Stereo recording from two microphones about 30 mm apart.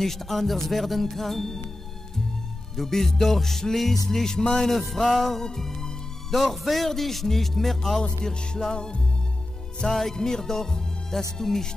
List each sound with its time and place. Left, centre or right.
0.0 s music: centre
2.7 s music: centre
4.2 s speech: left
5.0 s music: centre
6.3 s speech: centre
7.2 s music: centre
9.8 s music: centre